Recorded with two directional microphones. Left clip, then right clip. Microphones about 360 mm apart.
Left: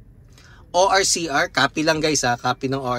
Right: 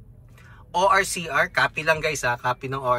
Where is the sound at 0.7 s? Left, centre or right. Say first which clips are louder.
Left 3 dB; centre.